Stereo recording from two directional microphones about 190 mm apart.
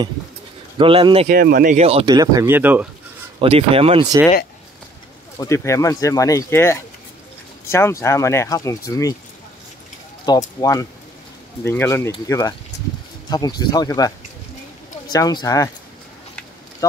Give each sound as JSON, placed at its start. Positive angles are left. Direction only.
{"t": 0.7, "sound": "speech", "side_deg": -25}
{"t": 1.3, "sound": "speech", "side_deg": -50}
{"t": 1.8, "sound": "speech", "side_deg": -30}
{"t": 2.1, "sound": "speech", "side_deg": -15}
{"t": 3.3, "sound": "speech", "side_deg": -30}
{"t": 5.4, "sound": "speech", "side_deg": 15}
{"t": 10.2, "sound": "speech", "side_deg": 20}
{"t": 15.1, "sound": "speech", "side_deg": 20}